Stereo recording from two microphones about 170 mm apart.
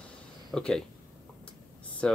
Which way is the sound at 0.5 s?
5° left (ahead or behind).